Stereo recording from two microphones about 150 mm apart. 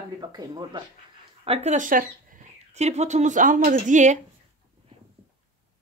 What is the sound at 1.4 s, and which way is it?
Speech, 45° right (ahead or behind).